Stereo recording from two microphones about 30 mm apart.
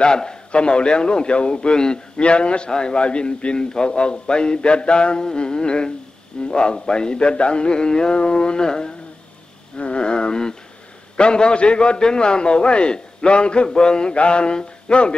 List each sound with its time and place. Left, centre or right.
0.0 s a man's voice: left
9.8 s a sound: left
11.1 s a man's voice: left